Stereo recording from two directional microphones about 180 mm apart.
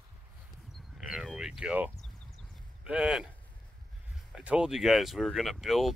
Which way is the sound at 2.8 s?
5° right (ahead or behind).